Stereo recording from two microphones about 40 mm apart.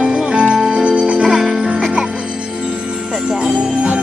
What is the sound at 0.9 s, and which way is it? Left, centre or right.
Music, right.